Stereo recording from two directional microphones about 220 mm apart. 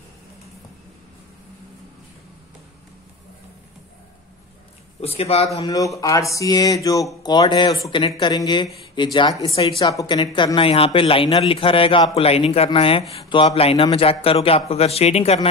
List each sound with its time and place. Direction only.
5.0 s speech: 25° left (ahead or behind)
5.7 s mantra: 15° left (ahead or behind)
7.2 s speech: 20° left (ahead or behind)